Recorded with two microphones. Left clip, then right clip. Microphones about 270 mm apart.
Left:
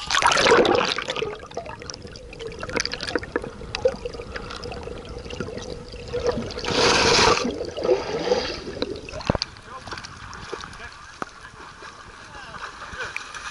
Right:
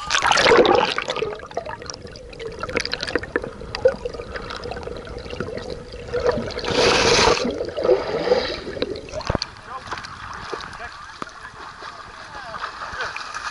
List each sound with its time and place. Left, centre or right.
0.1 s toilet flush: centre
2.4 s water: centre
5.5 s water: centre
6.4 s a sound: centre
12.5 s boat: centre